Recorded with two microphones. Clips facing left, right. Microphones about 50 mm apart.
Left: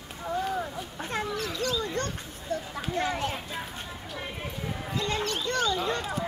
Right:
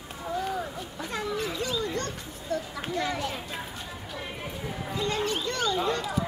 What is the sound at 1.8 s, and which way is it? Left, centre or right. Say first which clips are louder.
Children playing: even; left.